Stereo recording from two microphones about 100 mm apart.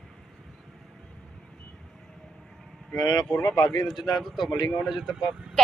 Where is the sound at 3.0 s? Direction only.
40° left (ahead or behind).